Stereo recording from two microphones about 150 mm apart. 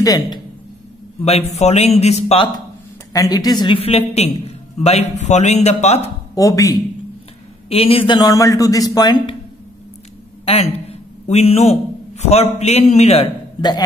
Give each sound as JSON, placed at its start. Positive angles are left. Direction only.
{"t": 0.0, "sound": "speech", "side_deg": 25}
{"t": 1.5, "sound": "speech", "side_deg": 45}
{"t": 3.1, "sound": "a woman's voice", "side_deg": 25}
{"t": 6.3, "sound": "a man's voice", "side_deg": 20}
{"t": 7.7, "sound": "a man's voice", "side_deg": 40}
{"t": 10.4, "sound": "a man's voice", "side_deg": 40}